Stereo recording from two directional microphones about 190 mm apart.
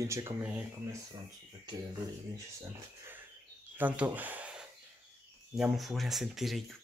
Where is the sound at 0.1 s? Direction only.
15° right (ahead or behind).